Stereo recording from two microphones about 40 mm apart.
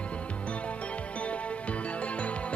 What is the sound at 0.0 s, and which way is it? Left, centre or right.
Music, left.